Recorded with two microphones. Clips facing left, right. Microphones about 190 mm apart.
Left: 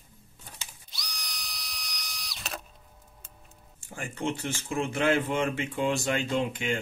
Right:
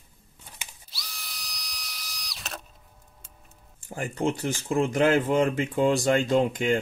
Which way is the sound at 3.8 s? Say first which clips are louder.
Right 5 dB; 35° right (ahead or behind).